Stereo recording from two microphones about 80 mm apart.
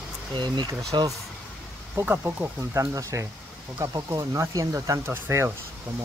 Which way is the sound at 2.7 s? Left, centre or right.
Right.